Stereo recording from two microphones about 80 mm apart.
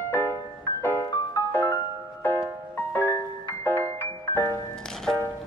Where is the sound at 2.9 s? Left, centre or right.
Left.